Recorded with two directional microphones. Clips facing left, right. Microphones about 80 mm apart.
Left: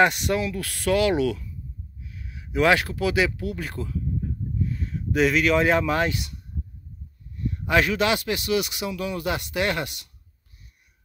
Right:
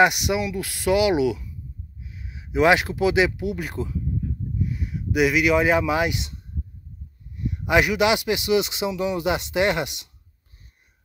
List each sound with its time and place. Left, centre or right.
0.0 s speech: centre
6.1 s a man's voice: right